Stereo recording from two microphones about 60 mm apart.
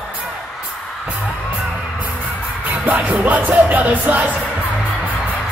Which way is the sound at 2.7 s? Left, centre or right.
Right.